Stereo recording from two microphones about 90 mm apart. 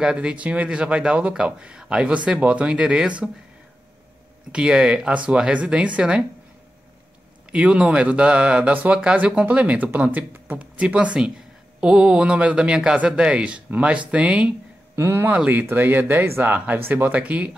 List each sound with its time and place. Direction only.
0.0 s speech: 10° right (ahead or behind)
4.5 s speech: 10° right (ahead or behind)
7.5 s speech: 10° right (ahead or behind)
15.0 s speech: 30° right (ahead or behind)